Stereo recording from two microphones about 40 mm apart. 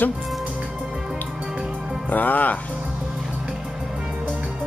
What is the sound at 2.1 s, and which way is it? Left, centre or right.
Speech, left.